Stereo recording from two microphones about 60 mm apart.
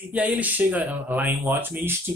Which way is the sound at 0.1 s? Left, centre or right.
Right.